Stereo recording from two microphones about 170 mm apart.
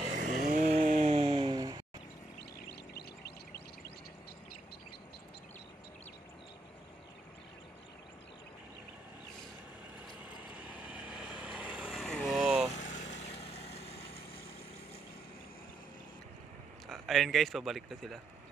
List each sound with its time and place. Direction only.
0.0 s chainsaw: 50° right (ahead or behind)
0.7 s a sound: 40° right (ahead or behind); by 1.8 s 25° right (ahead or behind)
10.7 s vehicle: 10° right (ahead or behind)
12.7 s vehicle: 45° left (ahead or behind)
16.9 s speech: centre (ahead or behind)